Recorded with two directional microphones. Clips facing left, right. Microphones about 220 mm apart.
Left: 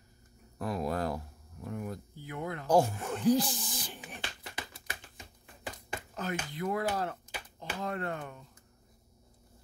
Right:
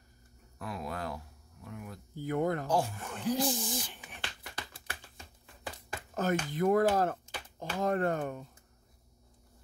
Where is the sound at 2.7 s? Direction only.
40° left (ahead or behind).